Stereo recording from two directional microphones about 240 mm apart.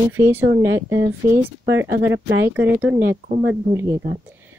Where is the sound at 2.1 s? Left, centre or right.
Right.